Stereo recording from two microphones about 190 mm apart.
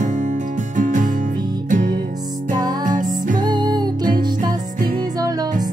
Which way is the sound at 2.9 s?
45° right (ahead or behind).